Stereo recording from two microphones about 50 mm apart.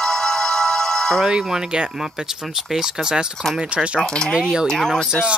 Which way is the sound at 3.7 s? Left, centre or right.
Right.